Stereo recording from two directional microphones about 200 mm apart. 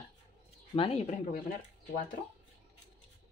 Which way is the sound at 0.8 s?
30° left (ahead or behind).